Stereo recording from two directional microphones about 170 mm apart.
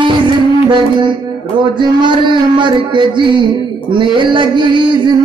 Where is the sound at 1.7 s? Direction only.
25° right (ahead or behind).